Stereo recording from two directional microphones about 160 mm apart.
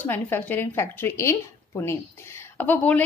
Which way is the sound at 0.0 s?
10° left (ahead or behind).